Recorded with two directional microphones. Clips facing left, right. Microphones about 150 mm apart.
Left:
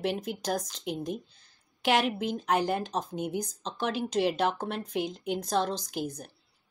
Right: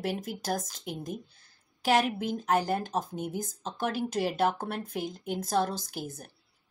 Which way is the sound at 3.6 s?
45° right (ahead or behind).